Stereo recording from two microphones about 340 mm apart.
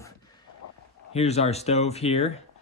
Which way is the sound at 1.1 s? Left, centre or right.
Centre.